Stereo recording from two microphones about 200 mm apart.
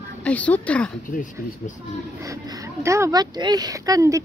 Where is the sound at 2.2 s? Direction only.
15° right (ahead or behind).